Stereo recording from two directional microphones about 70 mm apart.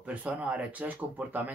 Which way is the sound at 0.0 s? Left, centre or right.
Centre.